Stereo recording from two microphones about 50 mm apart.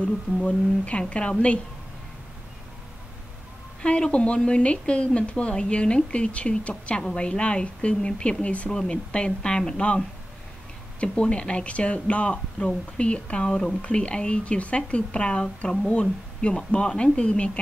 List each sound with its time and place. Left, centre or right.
0.5 s a woman's voice: left
3.8 s a woman's voice: left
13.5 s a woman's voice: centre